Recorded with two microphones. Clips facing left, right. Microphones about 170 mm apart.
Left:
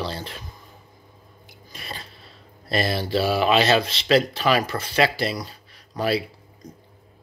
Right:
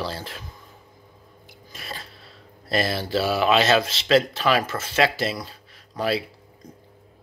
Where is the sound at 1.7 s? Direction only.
Centre (ahead or behind).